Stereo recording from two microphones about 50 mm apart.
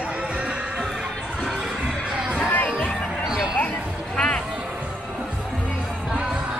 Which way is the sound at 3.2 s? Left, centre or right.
Centre.